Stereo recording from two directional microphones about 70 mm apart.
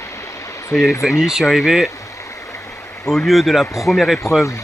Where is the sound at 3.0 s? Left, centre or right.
Centre.